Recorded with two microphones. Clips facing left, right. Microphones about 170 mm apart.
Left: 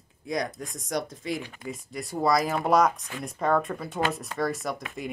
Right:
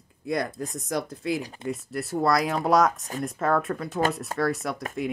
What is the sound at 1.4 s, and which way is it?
Speech, 35° right (ahead or behind).